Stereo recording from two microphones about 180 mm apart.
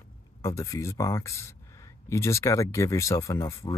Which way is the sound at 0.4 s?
15° left (ahead or behind).